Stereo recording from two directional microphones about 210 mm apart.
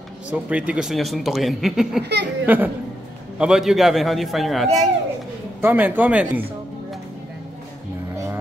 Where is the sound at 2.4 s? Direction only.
10° right (ahead or behind).